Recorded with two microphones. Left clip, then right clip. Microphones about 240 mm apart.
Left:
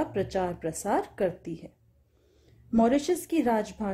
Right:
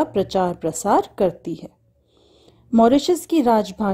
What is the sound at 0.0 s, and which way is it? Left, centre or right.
Speech, right.